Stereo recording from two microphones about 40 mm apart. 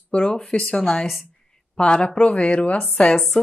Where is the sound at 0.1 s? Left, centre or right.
Left.